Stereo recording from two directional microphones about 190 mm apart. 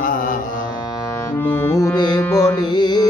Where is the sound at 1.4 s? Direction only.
15° left (ahead or behind).